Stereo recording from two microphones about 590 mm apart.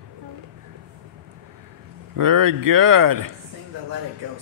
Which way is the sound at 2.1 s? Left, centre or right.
Right.